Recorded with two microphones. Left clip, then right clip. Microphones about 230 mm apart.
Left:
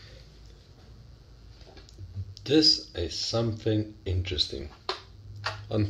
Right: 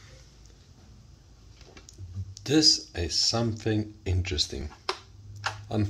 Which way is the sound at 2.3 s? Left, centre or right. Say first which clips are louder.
Even; right.